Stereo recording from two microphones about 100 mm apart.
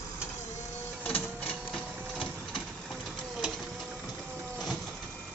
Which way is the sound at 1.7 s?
Centre (ahead or behind).